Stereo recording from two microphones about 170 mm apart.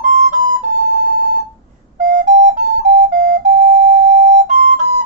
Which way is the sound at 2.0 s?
50° right (ahead or behind).